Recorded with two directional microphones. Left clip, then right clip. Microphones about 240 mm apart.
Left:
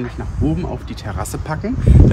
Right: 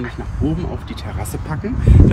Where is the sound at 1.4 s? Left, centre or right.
Left.